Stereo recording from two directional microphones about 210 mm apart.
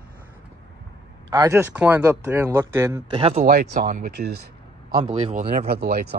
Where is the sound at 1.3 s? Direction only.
15° right (ahead or behind).